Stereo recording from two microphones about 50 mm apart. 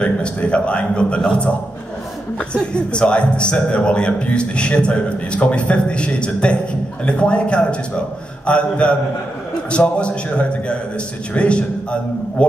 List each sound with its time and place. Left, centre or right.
0.0 s a man's voice: left
2.5 s a man's voice: centre